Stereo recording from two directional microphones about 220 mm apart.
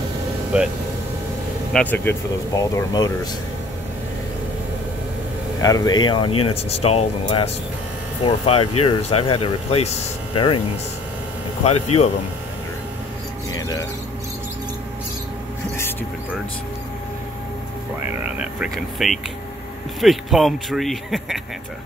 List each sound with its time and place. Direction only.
1.7 s speech: 5° left (ahead or behind)
5.6 s speech: 15° left (ahead or behind)
11.6 s speech: 30° left (ahead or behind)
13.5 s a sound: 15° left (ahead or behind)
18.0 s a sound: 10° right (ahead or behind)
20.0 s speech: centre (ahead or behind)